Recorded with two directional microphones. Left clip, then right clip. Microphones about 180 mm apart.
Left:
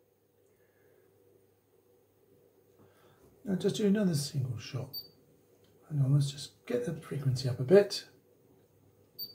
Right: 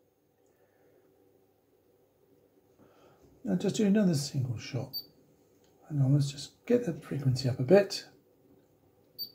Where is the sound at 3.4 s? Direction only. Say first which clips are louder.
Even; 30° right (ahead or behind).